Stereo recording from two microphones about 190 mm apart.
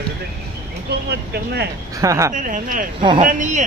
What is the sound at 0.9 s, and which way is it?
Speech, 60° right (ahead or behind).